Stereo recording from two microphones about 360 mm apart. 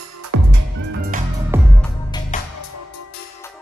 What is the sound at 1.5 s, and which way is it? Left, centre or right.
Music, centre.